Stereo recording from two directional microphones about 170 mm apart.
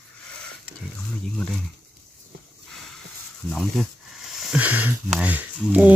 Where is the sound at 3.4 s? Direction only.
5° left (ahead or behind).